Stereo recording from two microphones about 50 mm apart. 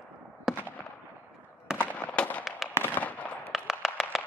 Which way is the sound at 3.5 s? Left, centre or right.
Centre.